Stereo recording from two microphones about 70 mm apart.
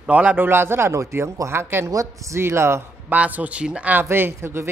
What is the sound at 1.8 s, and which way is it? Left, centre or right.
Speech, right.